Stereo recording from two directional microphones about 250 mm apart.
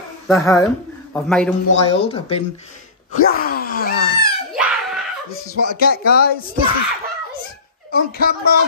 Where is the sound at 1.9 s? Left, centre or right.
Left.